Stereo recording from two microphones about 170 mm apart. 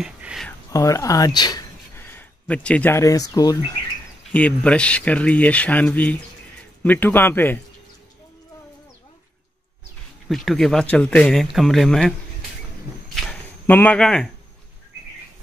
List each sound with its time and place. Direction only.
0.0 s a sound: 5° right (ahead or behind)
0.5 s speech: 20° left (ahead or behind)
2.0 s speech: 10° left (ahead or behind)
4.3 s speech: 10° left (ahead or behind)
10.2 s speech: centre (ahead or behind)
13.1 s a sound: 5° left (ahead or behind)